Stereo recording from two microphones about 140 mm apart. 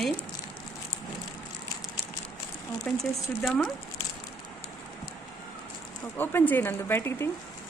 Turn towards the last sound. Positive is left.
turn(degrees=20)  # may be behind; listen again after turning